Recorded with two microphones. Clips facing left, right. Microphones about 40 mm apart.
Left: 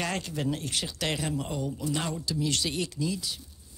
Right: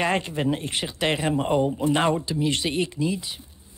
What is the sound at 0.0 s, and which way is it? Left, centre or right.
Speech, right.